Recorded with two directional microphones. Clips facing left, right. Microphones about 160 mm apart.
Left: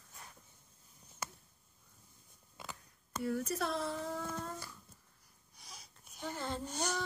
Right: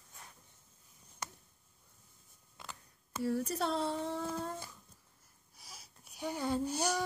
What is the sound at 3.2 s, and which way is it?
Speech, 30° right (ahead or behind).